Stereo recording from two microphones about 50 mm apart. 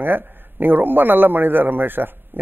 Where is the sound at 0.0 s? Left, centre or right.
Right.